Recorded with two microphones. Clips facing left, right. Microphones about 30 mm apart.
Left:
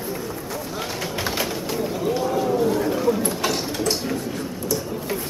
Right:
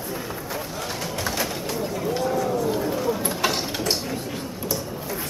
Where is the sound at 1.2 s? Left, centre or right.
Centre.